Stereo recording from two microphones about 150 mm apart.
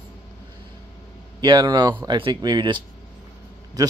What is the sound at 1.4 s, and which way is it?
Speech, 30° right (ahead or behind).